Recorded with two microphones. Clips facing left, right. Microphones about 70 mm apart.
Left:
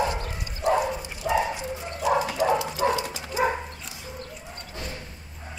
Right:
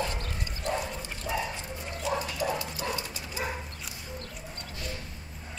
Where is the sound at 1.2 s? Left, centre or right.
Centre.